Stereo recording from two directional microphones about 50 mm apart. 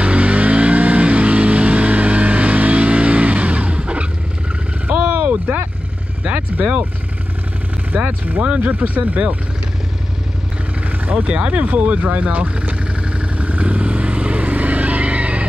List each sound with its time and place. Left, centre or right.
0.0 s vehicle: right
7.9 s speech: right
10.9 s vehicle: right